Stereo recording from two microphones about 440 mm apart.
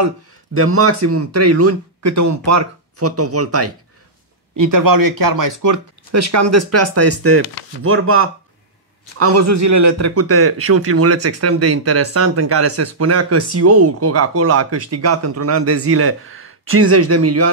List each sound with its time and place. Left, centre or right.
0.6 s a man's voice: right
4.6 s a man's voice: right